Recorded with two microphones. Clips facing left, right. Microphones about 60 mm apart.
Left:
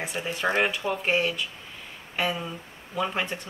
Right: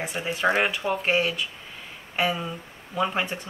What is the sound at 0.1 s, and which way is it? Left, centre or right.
Speech, centre.